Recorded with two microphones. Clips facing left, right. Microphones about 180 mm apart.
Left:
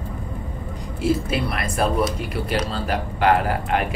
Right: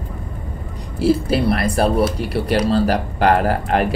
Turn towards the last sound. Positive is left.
turn(degrees=-40)  # may be behind; listen again after turning